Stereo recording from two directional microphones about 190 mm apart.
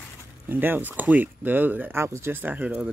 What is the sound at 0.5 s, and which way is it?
Speech, 10° right (ahead or behind).